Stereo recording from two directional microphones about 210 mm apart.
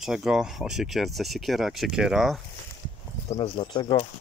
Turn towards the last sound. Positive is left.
turn(degrees=20)  # may be behind; listen again after turning